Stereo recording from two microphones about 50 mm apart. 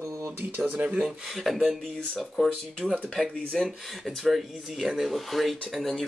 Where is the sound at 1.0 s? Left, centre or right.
Centre.